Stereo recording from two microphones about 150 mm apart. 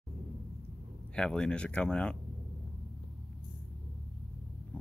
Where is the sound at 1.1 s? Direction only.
5° left (ahead or behind).